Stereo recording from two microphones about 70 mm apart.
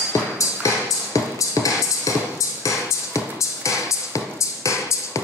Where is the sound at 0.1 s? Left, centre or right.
Left.